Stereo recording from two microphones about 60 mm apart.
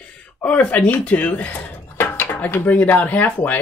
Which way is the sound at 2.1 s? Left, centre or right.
Left.